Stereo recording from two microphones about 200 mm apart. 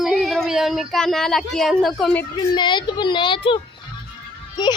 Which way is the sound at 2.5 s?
25° left (ahead or behind).